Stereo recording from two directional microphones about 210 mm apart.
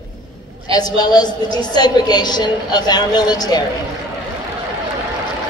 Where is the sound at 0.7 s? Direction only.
20° left (ahead or behind).